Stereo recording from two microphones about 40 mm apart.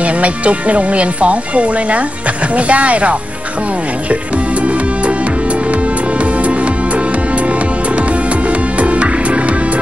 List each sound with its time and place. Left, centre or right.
0.0 s speech: right
4.1 s music: right